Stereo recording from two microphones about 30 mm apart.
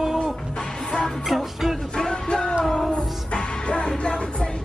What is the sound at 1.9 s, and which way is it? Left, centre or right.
Music, left.